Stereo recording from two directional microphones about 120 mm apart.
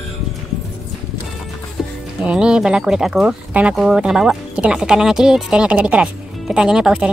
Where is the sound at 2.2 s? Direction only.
10° right (ahead or behind).